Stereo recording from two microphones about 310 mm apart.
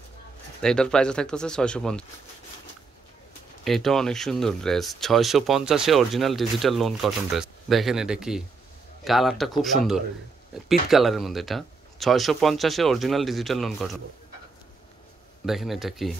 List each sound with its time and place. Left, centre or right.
0.6 s speech: centre
3.6 s speech: centre
15.4 s speech: centre